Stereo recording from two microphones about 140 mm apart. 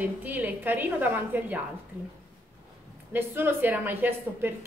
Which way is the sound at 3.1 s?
15° right (ahead or behind).